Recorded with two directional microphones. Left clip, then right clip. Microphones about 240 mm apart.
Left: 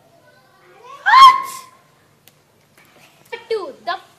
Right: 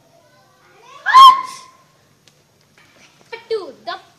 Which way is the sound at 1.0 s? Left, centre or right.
Centre.